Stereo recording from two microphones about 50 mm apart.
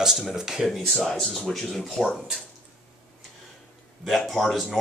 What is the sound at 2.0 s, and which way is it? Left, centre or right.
Speech, centre.